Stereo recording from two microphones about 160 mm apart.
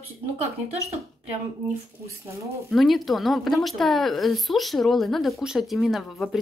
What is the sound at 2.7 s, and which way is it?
Speech, centre (ahead or behind).